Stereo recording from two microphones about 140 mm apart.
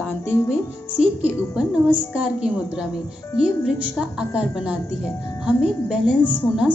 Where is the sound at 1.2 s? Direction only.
10° right (ahead or behind).